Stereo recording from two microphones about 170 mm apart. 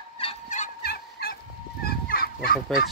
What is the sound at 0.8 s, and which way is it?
Fowl, 65° left (ahead or behind).